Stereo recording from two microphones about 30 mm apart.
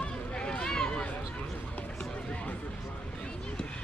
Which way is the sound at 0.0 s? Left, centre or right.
Left.